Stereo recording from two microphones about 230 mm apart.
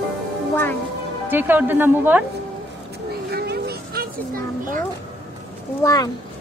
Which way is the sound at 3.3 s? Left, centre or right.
Right.